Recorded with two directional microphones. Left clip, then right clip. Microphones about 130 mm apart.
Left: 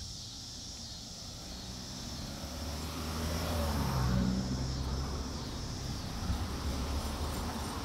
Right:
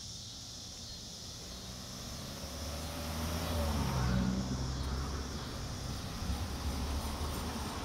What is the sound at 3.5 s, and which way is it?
Vehicle, 25° left (ahead or behind).